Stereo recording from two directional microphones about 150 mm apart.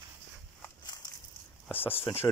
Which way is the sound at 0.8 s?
25° left (ahead or behind).